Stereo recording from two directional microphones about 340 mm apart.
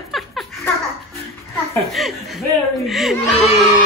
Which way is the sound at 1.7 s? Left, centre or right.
Centre.